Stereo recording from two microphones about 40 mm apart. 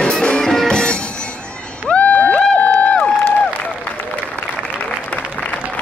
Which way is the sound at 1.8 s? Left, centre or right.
Left.